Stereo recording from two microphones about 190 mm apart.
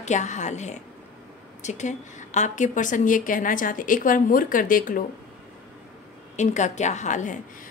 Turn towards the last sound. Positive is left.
turn(degrees=40)  # may be behind; listen again after turning